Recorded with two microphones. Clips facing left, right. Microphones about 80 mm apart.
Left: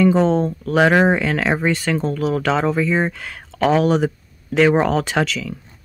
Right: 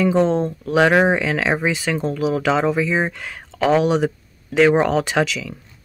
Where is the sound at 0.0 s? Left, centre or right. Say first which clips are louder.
Left 2 dB; centre.